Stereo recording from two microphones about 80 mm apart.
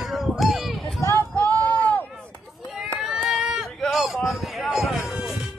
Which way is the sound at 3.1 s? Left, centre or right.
Centre.